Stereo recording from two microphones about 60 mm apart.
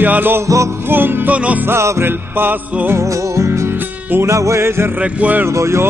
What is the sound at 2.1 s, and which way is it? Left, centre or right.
Music, right.